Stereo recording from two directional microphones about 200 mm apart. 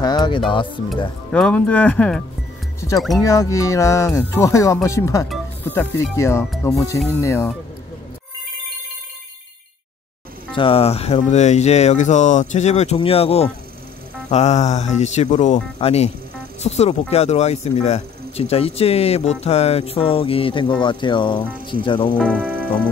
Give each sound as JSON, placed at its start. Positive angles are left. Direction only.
{"t": 0.0, "sound": "music", "side_deg": 20}
{"t": 0.5, "sound": "speech", "side_deg": 25}
{"t": 1.3, "sound": "speech", "side_deg": 5}
{"t": 3.3, "sound": "speech", "side_deg": 15}
{"t": 10.5, "sound": "speech", "side_deg": 25}
{"t": 22.1, "sound": "speech", "side_deg": 5}
{"t": 22.4, "sound": "music", "side_deg": -10}